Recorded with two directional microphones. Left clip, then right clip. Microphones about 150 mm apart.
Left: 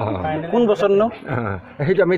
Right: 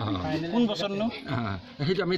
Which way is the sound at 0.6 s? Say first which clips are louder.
Left 15 dB; 10° left (ahead or behind).